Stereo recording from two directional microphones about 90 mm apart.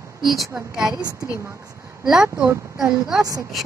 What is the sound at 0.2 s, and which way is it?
Speech, centre (ahead or behind).